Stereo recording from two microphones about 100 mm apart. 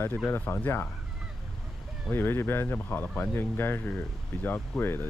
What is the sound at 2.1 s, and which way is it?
Speech, 20° left (ahead or behind).